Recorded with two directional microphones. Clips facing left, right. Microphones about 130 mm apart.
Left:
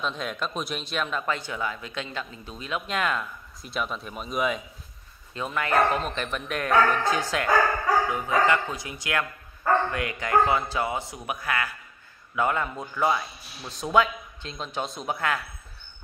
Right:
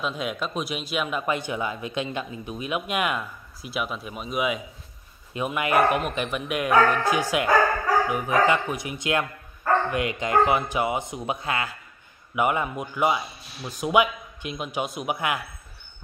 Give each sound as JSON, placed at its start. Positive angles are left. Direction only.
{"t": 0.0, "sound": "speech", "side_deg": -5}
{"t": 5.3, "sound": "a man's voice", "side_deg": -15}